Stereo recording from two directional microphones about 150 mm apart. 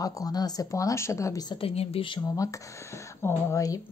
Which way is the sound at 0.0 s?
25° left (ahead or behind).